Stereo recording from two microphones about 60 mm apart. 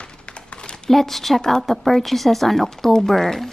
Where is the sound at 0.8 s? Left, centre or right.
Centre.